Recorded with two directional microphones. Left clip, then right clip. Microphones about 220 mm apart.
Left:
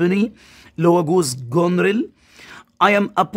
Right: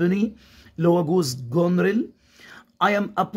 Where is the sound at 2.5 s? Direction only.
35° left (ahead or behind).